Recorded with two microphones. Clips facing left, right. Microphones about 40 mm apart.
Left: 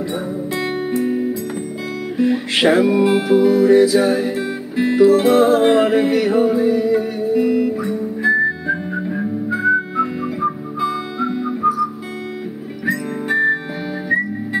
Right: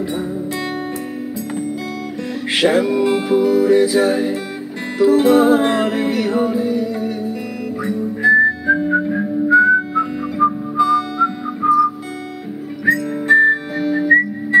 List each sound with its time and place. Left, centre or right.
0.9 s music: centre
2.1 s guitar: centre
2.5 s music: centre
8.2 s whistling: centre
10.4 s music: right
10.8 s music: centre
12.9 s music: centre